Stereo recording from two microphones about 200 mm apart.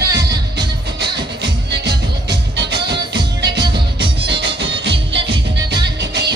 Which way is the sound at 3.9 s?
60° right (ahead or behind).